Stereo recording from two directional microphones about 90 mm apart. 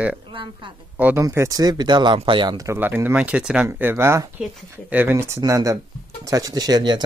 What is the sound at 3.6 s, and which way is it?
Speech, 25° right (ahead or behind).